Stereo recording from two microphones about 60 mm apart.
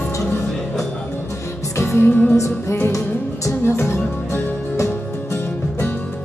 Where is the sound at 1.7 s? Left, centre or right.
Left.